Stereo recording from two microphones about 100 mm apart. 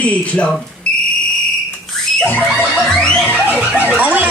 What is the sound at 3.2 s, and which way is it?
Music, 15° right (ahead or behind).